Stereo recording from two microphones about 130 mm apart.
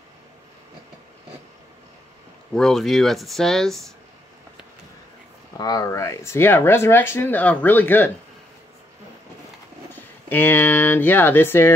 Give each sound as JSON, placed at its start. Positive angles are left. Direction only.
{"t": 2.5, "sound": "speech", "side_deg": 5}
{"t": 5.6, "sound": "speech", "side_deg": 30}
{"t": 9.9, "sound": "speech", "side_deg": 15}